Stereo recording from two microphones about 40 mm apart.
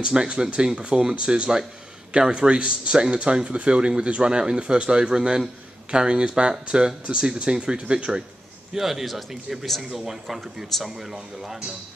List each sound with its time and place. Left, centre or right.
0.0 s a man's voice: right
8.7 s speech: centre